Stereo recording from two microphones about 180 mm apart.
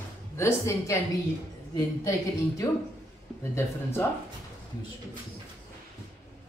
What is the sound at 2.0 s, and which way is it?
Speech, 20° left (ahead or behind).